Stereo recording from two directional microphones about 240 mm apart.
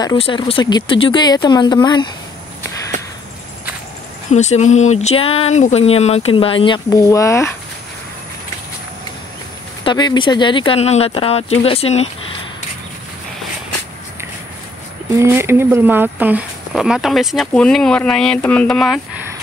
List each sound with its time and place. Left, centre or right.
0.0 s speech: centre
4.3 s speech: left; by 7.5 s centre
9.8 s speech: centre
15.1 s speech: centre